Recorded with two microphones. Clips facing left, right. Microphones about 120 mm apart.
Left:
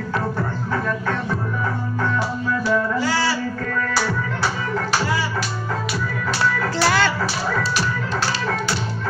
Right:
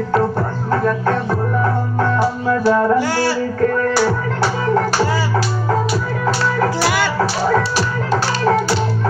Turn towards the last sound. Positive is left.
turn(degrees=-10)  # may be behind; listen again after turning